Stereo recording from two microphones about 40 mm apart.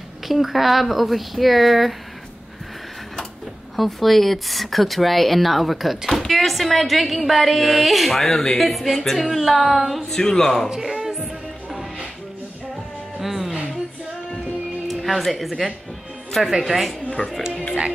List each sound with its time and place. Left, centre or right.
0.3 s speech: centre
3.7 s speech: centre
8.3 s speech: centre
8.5 s speech: centre
10.0 s speech: centre
10.7 s music: centre
13.2 s music: centre
14.9 s speech: centre
16.6 s speech: centre
17.2 s speech: left